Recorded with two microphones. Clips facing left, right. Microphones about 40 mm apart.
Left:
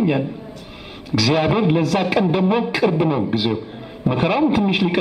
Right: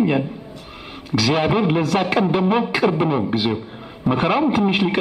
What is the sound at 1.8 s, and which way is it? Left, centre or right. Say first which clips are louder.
Speech: even; right.